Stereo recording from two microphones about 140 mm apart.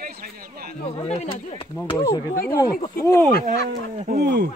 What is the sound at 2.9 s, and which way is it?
Speech, 20° left (ahead or behind).